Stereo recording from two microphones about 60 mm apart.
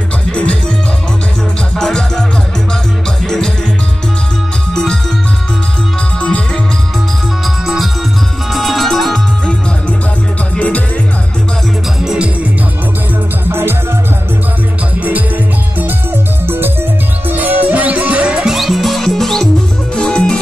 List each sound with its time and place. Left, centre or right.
0.3 s music: centre
1.8 s music: centre
7.6 s music: centre
12.0 s music: centre
13.5 s music: right
16.4 s music: right; by 18.5 s centre
18.5 s music: centre